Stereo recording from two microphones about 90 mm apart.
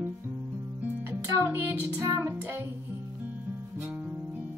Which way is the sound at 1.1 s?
25° right (ahead or behind).